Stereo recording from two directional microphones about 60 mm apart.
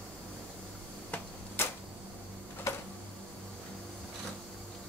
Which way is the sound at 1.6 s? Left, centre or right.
Left.